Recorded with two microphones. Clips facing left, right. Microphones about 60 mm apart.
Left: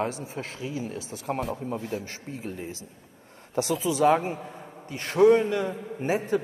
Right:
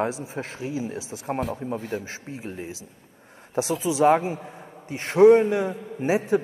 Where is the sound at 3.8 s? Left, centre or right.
Centre.